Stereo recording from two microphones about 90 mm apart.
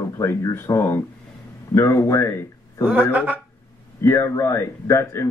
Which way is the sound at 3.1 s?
20° right (ahead or behind).